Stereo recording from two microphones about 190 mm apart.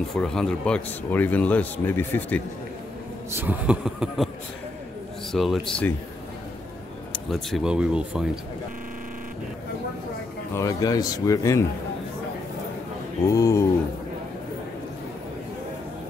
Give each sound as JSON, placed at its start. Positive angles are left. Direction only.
{"t": 0.1, "sound": "speech", "side_deg": 5}
{"t": 3.3, "sound": "a man's voice", "side_deg": -10}
{"t": 5.3, "sound": "speech", "side_deg": 0}
{"t": 7.1, "sound": "speech", "side_deg": 0}
{"t": 10.5, "sound": "speech", "side_deg": 15}
{"t": 13.3, "sound": "speech", "side_deg": 20}